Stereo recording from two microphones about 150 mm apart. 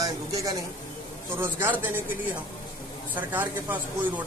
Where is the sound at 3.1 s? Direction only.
10° right (ahead or behind).